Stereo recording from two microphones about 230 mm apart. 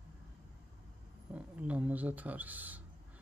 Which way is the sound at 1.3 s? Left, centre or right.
Centre.